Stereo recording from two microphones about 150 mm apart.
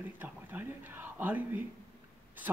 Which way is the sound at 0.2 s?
15° right (ahead or behind).